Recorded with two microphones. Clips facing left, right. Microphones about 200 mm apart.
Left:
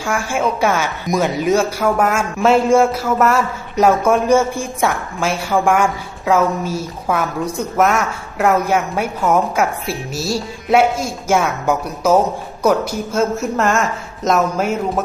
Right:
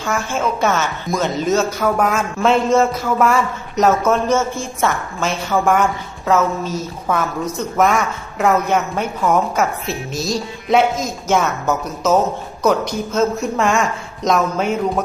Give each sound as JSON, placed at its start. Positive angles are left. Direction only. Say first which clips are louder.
{"t": 0.0, "sound": "speech", "louder": "left 1 dB", "side_deg": 10}